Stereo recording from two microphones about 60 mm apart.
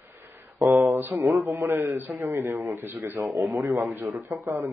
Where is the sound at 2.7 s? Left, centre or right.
Right.